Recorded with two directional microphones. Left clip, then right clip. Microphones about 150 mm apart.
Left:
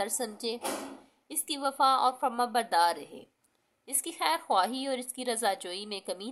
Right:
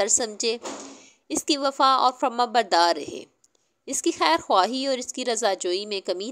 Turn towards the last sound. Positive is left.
turn(degrees=-30)  # may be behind; listen again after turning